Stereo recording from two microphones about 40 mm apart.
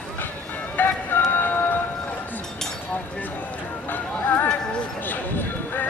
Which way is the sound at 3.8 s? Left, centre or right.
Left.